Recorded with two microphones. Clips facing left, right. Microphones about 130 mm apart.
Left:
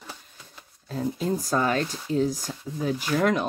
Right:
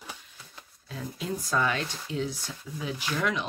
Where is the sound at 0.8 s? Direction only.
40° left (ahead or behind).